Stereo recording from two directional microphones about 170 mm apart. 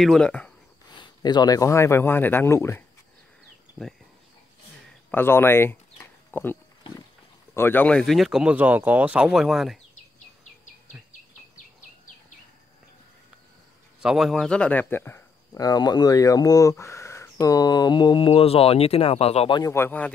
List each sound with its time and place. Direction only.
0.0 s speech: 5° left (ahead or behind)
0.8 s speech: 25° left (ahead or behind)
3.8 s speech: centre (ahead or behind)
5.1 s speech: 15° left (ahead or behind)
14.0 s speech: centre (ahead or behind); by 19.6 s 35° left (ahead or behind)
19.6 s speech: 15° left (ahead or behind)